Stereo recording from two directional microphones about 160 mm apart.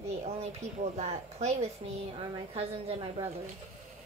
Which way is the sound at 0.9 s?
40° right (ahead or behind).